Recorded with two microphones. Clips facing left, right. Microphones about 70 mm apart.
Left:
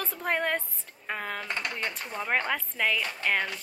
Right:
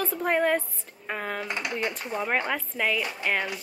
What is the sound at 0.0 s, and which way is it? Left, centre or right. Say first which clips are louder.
Speech: right 5 dB; centre.